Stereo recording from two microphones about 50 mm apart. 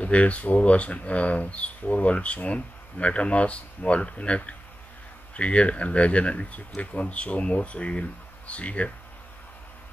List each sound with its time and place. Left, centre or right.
0.0 s speech: left